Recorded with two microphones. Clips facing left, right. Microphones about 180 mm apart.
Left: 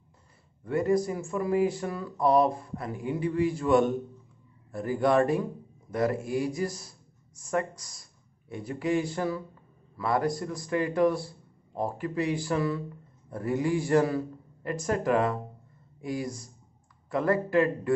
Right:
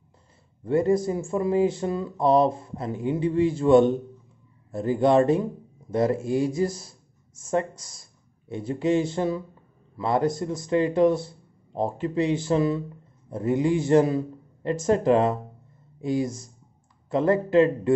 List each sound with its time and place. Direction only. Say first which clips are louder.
0.7 s speech: right 4 dB; 25° right (ahead or behind)